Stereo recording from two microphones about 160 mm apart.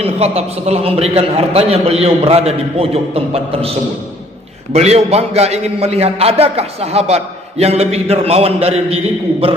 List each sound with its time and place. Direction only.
0.0 s a man's voice: 40° right (ahead or behind)
4.7 s a man's voice: 40° right (ahead or behind)